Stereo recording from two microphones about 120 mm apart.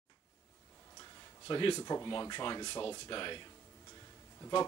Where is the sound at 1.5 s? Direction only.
45° left (ahead or behind).